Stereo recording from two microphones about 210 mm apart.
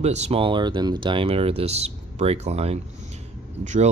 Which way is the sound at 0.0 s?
30° right (ahead or behind).